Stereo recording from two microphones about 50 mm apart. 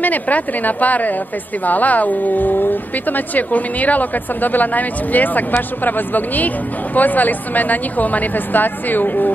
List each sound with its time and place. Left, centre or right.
0.0 s speech: left